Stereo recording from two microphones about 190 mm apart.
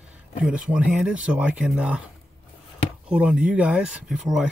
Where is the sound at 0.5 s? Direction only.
5° right (ahead or behind).